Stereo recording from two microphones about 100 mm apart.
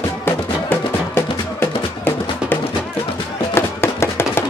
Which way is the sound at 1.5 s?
20° left (ahead or behind).